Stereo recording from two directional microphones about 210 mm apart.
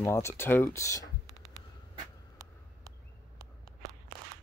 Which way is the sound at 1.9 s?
15° right (ahead or behind).